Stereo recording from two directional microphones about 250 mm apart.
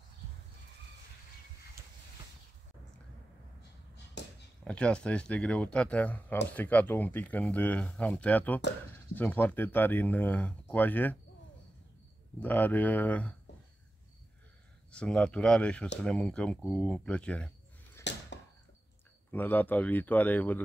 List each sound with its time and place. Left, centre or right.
4.2 s a sound: left
4.6 s speech: centre
12.4 s speech: centre
14.9 s speech: centre
18.1 s a sound: left
19.3 s speech: centre